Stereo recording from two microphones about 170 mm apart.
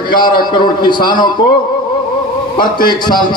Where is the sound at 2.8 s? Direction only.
25° left (ahead or behind).